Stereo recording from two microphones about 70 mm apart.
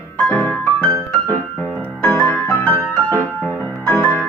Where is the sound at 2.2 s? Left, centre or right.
Left.